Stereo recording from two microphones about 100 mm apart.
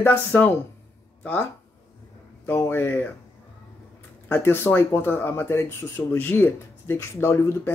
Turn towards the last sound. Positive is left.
turn(degrees=25)  # may be behind; listen again after turning